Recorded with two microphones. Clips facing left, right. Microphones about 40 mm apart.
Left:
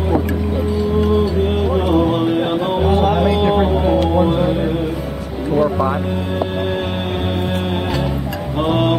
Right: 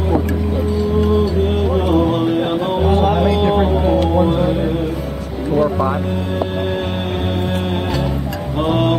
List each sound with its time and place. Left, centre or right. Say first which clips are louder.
1.8 s music: even; centre
5.6 s music: even; centre
8.6 s mantra: even; centre